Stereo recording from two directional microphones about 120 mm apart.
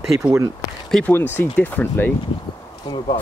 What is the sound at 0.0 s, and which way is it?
Speech, 10° right (ahead or behind).